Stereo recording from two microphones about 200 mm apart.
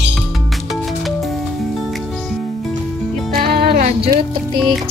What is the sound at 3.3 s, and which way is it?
Music, 50° right (ahead or behind).